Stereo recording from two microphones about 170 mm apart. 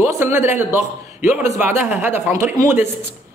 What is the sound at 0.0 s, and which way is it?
A man's voice, 15° right (ahead or behind).